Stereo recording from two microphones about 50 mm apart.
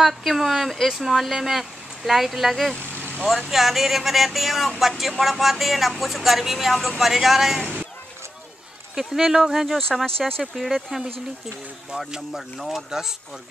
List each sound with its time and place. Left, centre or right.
0.0 s speech: centre
2.9 s vehicle: left
3.4 s speech: centre
8.9 s speech: centre
10.0 s speech: centre
10.4 s speech: centre
12.3 s speech: centre